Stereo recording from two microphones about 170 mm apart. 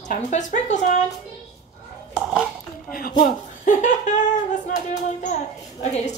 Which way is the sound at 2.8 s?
60° left (ahead or behind).